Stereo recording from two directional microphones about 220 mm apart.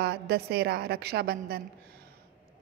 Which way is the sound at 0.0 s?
50° right (ahead or behind).